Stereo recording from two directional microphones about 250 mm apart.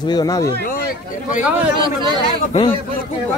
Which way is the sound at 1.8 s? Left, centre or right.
Centre.